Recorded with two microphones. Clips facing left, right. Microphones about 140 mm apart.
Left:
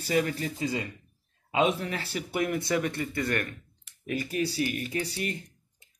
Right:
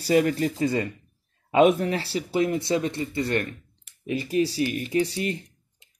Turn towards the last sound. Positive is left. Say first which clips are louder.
# right 7 dB
turn(degrees=-30)  # may be behind; listen again after turning